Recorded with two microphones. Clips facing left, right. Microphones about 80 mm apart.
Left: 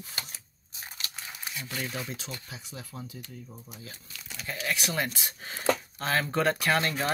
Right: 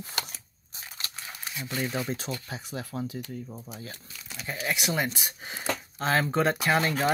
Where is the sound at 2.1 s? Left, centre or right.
Right.